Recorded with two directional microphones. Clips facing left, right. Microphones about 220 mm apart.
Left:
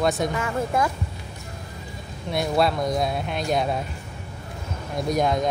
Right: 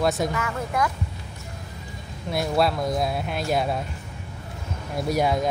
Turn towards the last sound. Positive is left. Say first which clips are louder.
# even
turn(degrees=-5)  # may be behind; listen again after turning